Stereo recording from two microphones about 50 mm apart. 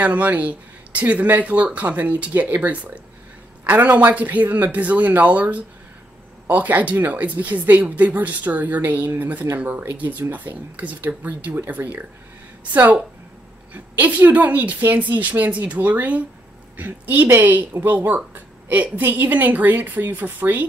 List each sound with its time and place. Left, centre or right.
0.0 s a woman's voice: right
13.7 s a woman's voice: right